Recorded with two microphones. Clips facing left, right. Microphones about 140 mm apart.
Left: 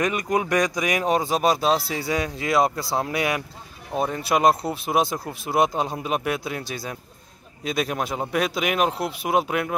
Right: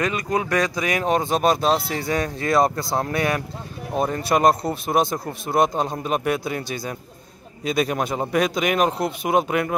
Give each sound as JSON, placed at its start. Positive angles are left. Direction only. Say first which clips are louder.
{"t": 0.0, "sound": "speech", "louder": "even", "side_deg": 20}